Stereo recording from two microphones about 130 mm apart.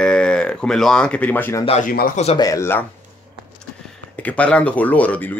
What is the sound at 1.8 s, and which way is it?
Speech, 90° left.